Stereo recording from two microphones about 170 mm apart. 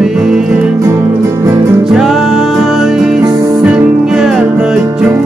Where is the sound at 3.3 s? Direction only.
20° right (ahead or behind).